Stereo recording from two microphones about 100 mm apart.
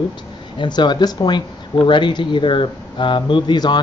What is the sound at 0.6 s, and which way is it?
Speech, 50° left (ahead or behind).